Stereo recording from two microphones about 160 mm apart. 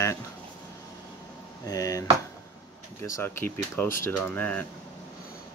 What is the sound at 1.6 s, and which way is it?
Speech, 20° left (ahead or behind).